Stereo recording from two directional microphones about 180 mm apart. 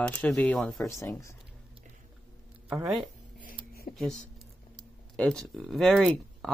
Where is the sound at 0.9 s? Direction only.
15° left (ahead or behind).